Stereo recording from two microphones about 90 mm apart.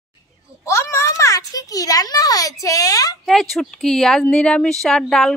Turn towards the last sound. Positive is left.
turn(degrees=5)  # may be behind; listen again after turning